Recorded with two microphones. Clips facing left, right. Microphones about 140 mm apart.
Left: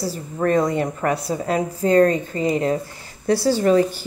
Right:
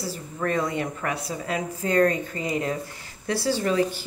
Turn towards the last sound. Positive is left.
turn(degrees=40)  # may be behind; listen again after turning